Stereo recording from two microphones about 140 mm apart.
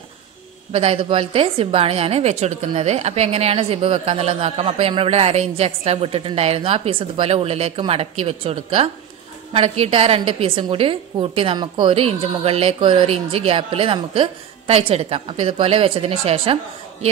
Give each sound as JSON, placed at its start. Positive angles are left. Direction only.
{"t": 0.7, "sound": "a woman's voice", "side_deg": -40}